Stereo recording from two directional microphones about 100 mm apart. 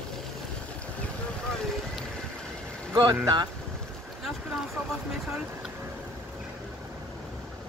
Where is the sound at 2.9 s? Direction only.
40° right (ahead or behind).